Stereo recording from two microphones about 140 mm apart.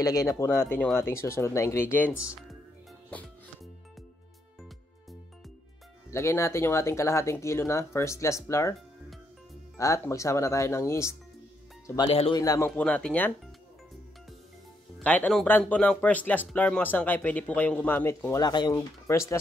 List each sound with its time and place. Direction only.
0.0 s speech: 25° left (ahead or behind)
6.0 s speech: 20° left (ahead or behind)
9.8 s speech: 20° left (ahead or behind)
12.1 s speech: 45° left (ahead or behind)
12.4 s speech: 25° left (ahead or behind)
12.6 s speech: 10° left (ahead or behind)
15.0 s speech: 10° left (ahead or behind)
18.4 s speech: 30° left (ahead or behind)